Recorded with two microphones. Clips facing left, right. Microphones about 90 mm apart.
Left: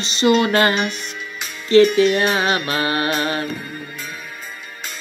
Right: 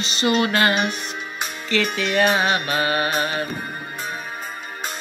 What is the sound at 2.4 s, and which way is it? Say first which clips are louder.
Mantra: left 1 dB; 30° right (ahead or behind).